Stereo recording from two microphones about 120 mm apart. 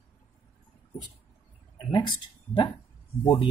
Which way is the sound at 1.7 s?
40° left (ahead or behind).